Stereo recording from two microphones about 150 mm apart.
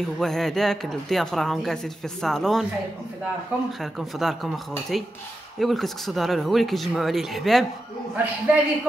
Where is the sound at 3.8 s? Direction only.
Centre (ahead or behind).